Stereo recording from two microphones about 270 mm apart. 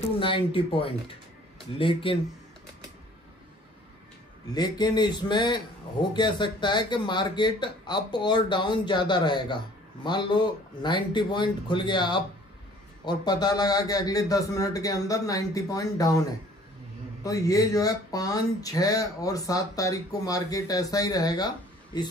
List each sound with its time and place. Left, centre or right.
0.2 s speech: centre
4.6 s speech: centre